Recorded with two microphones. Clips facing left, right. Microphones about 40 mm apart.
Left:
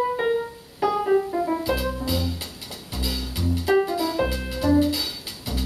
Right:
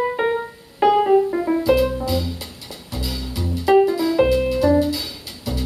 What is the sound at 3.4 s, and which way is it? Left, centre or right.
Music, right.